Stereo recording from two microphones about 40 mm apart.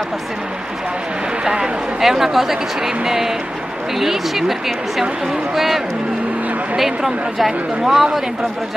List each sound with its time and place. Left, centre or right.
1.4 s a man's voice: right
2.0 s speech: centre
6.8 s speech: centre